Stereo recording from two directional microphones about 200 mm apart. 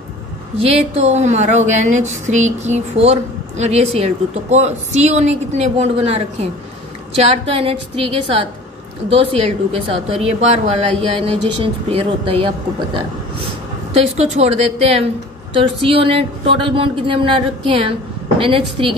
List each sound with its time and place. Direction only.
0.6 s a woman's voice: 30° right (ahead or behind)
13.9 s a woman's voice: 30° right (ahead or behind)